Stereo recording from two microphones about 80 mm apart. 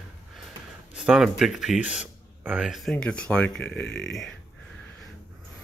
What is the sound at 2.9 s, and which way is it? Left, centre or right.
Speech, centre.